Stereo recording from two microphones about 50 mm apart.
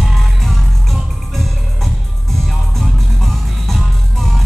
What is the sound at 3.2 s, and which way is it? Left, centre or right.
Music, centre.